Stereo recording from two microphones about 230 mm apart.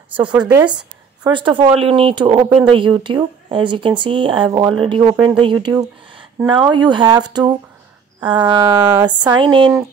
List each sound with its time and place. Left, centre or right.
0.2 s a woman's voice: centre